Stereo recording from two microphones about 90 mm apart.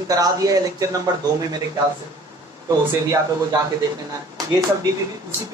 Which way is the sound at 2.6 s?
35° right (ahead or behind).